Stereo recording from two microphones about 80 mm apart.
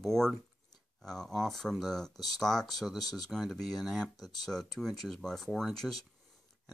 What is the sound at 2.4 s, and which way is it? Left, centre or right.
Speech, centre.